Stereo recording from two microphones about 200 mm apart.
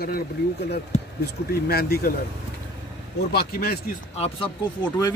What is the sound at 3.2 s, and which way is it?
Speech, 50° left (ahead or behind).